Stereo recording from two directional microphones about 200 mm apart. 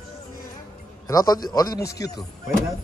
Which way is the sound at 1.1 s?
20° left (ahead or behind).